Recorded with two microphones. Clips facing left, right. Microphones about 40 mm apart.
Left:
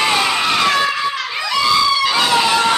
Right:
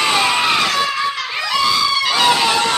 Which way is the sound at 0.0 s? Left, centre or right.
Centre.